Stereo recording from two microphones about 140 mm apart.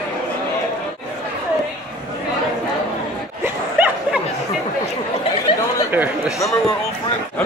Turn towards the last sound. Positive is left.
turn(degrees=20)  # may be behind; listen again after turning